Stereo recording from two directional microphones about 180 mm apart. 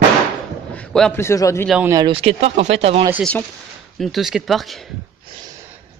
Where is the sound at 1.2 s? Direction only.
15° left (ahead or behind).